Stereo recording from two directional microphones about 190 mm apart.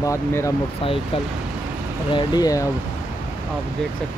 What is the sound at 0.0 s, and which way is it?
Speech, 15° left (ahead or behind).